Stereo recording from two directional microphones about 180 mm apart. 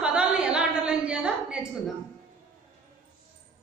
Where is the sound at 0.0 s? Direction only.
5° right (ahead or behind).